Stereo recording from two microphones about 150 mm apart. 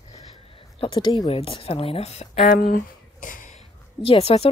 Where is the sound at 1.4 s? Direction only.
40° left (ahead or behind); by 2.7 s 65° left (ahead or behind).